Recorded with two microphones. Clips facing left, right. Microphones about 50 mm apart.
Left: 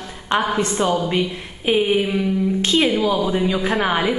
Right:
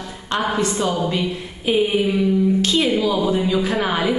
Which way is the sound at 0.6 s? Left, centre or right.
Left.